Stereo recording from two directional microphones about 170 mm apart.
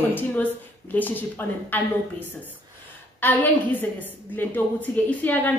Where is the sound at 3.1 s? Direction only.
10° left (ahead or behind).